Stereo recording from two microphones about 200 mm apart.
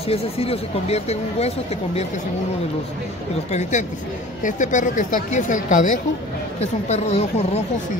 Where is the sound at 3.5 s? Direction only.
35° left (ahead or behind).